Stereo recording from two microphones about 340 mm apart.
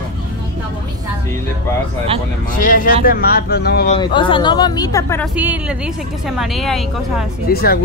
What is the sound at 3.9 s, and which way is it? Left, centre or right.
Speech, centre.